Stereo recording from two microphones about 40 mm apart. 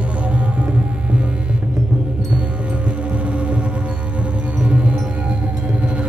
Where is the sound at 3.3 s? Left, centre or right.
Right.